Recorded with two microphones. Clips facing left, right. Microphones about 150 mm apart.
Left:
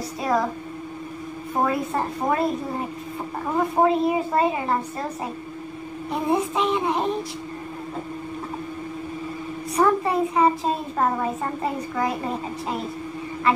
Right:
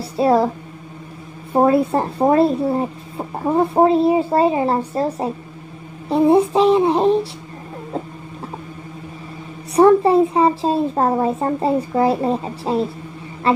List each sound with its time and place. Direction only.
0.2 s a child's voice: 30° right (ahead or behind)
1.5 s a child's voice: 30° right (ahead or behind)
9.8 s a child's voice: 30° right (ahead or behind)